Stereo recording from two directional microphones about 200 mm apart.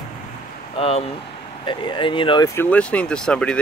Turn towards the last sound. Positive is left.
turn(degrees=5)  # may be behind; listen again after turning